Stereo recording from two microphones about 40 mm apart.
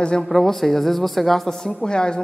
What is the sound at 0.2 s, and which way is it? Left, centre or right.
Speech, centre.